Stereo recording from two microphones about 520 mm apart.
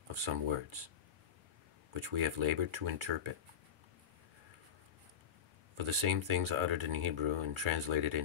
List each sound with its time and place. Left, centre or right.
0.1 s speech: right
2.0 s speech: right
5.8 s speech: right